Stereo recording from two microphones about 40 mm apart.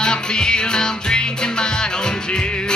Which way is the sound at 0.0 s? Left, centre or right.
Centre.